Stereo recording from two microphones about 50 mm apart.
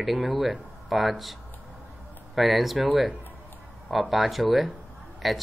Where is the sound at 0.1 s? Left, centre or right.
Right.